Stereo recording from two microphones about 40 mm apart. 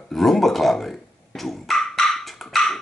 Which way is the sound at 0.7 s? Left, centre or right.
Centre.